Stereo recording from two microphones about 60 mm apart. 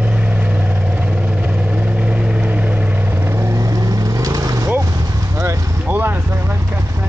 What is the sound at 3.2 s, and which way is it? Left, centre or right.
Vehicle, right.